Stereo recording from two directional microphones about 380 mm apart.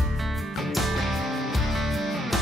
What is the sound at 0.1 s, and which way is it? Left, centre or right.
Music, centre.